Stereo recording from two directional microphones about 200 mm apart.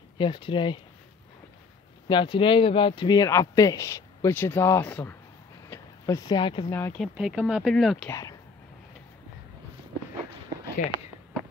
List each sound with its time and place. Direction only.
0.2 s speech: 25° left (ahead or behind)
2.0 s speech: 25° left (ahead or behind)
5.7 s a sound: 15° left (ahead or behind)
6.7 s speech: 10° left (ahead or behind)
7.2 s speech: 5° right (ahead or behind)
8.1 s speech: 15° left (ahead or behind)